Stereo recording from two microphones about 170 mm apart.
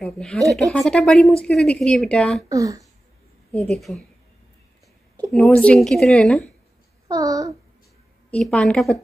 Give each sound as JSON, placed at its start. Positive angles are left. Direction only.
{"t": 0.0, "sound": "a woman's voice", "side_deg": 5}
{"t": 2.5, "sound": "speech", "side_deg": -20}
{"t": 3.5, "sound": "a woman's voice", "side_deg": 5}
{"t": 5.3, "sound": "a woman's voice", "side_deg": 0}
{"t": 7.1, "sound": "a child's voice", "side_deg": -20}
{"t": 8.3, "sound": "a woman's voice", "side_deg": 5}